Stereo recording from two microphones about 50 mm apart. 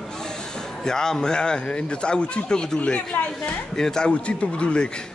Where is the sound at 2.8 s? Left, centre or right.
Left.